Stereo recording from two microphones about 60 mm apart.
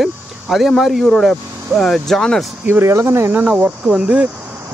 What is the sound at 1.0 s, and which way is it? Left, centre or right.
Speech, centre.